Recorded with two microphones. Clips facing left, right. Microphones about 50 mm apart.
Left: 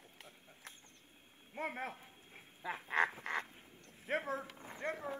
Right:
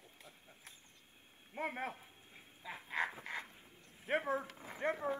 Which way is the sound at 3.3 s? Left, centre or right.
Left.